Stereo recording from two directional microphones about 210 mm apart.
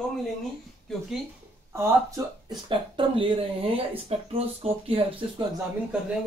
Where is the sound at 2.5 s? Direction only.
25° right (ahead or behind).